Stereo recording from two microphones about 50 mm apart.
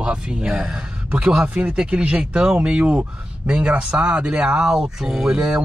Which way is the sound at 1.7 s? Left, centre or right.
Right.